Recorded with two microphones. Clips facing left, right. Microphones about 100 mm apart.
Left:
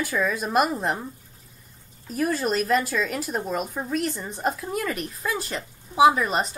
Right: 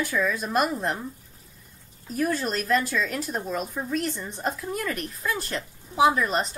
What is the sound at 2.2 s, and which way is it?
Speech, 5° left (ahead or behind).